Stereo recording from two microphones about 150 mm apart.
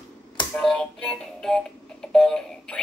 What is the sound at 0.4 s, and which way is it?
Music, 5° left (ahead or behind).